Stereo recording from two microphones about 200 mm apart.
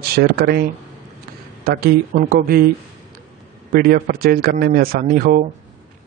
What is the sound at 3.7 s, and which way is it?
Speech, 50° right (ahead or behind).